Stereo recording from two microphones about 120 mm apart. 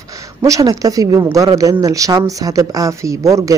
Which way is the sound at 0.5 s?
30° right (ahead or behind).